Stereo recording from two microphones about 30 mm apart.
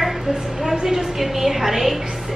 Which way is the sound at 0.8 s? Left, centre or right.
Centre.